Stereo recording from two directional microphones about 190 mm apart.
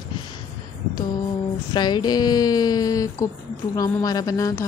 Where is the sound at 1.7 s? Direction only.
20° left (ahead or behind).